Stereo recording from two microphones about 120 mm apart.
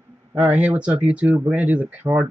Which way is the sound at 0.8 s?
10° right (ahead or behind).